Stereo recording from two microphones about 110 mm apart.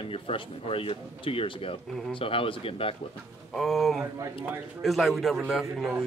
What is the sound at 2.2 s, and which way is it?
Speech, 55° left (ahead or behind).